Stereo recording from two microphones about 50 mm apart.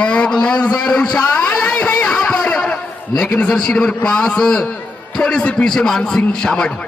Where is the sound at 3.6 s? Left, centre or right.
Centre.